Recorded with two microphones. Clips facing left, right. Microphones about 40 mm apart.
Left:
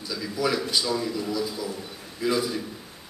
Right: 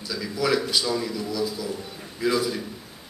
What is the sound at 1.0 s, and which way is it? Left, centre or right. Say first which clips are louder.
Speech: even; left.